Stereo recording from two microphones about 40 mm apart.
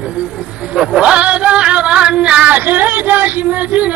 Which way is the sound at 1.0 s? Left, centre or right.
Right.